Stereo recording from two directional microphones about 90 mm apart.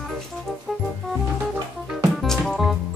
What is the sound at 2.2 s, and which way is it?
Music, 5° left (ahead or behind).